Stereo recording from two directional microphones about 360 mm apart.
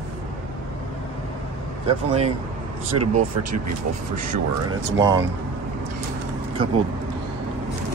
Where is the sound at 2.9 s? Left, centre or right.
Right.